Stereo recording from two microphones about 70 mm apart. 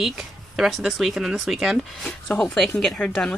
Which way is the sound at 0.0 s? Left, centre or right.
Centre.